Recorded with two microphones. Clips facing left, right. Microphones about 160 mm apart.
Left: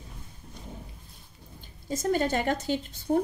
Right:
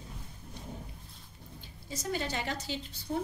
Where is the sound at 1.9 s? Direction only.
50° left (ahead or behind).